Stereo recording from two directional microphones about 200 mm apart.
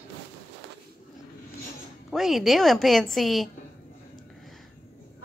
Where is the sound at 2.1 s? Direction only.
Centre (ahead or behind).